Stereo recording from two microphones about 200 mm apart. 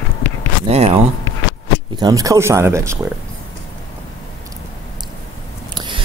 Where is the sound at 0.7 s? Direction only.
30° right (ahead or behind).